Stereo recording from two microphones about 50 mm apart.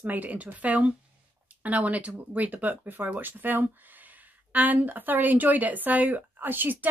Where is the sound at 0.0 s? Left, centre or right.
Right.